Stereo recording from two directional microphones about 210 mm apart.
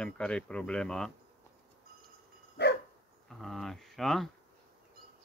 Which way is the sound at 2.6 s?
50° left (ahead or behind).